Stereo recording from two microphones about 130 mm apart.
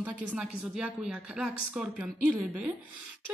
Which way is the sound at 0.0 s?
10° right (ahead or behind).